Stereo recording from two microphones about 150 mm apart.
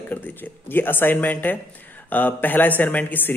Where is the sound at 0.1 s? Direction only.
15° left (ahead or behind).